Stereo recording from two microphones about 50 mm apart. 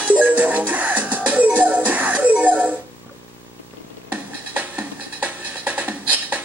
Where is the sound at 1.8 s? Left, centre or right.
Right.